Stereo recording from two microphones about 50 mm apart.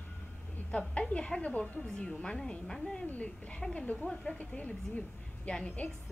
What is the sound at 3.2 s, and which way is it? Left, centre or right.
Speech, left.